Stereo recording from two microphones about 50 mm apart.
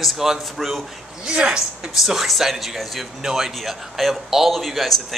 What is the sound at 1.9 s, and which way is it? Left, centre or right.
Speech, centre.